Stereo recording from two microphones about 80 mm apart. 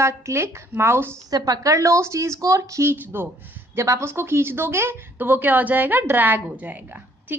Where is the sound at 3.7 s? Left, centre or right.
Right.